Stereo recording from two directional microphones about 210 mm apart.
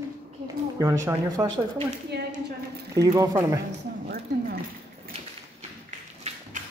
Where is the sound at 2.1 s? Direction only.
50° right (ahead or behind).